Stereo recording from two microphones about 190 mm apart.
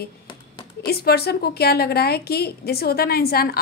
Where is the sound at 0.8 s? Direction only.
55° left (ahead or behind).